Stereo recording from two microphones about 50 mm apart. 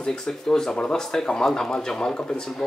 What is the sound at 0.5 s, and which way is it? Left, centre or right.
Speech, centre.